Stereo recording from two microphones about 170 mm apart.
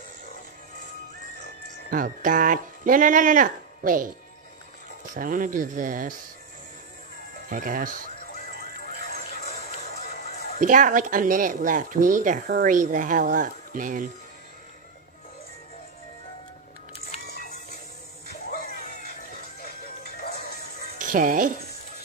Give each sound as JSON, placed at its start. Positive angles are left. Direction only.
{"t": 1.9, "sound": "speech", "side_deg": -55}
{"t": 5.1, "sound": "speech", "side_deg": -50}
{"t": 7.4, "sound": "speech", "side_deg": -55}
{"t": 9.5, "sound": "music", "side_deg": 40}
{"t": 10.6, "sound": "speech", "side_deg": -50}
{"t": 19.6, "sound": "music", "side_deg": 65}
{"t": 21.0, "sound": "speech", "side_deg": -50}